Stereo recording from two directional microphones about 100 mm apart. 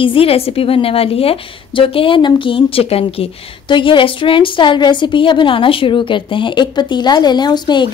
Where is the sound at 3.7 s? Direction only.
55° left (ahead or behind).